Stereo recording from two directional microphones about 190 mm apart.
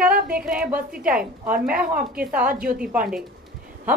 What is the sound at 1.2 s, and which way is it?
Speech, 50° right (ahead or behind).